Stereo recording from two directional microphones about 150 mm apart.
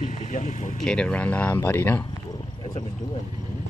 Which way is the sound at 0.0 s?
55° left (ahead or behind).